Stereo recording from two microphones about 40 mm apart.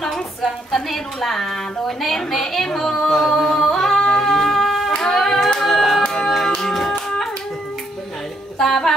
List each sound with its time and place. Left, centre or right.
0.0 s a woman's voice: centre
3.2 s singing: centre
4.8 s music: left
5.4 s music: centre
6.0 s music: centre
8.5 s music: centre